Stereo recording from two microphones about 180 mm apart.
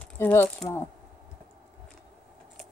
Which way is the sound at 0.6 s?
10° left (ahead or behind).